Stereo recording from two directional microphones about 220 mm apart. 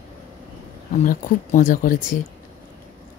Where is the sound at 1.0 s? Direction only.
35° left (ahead or behind).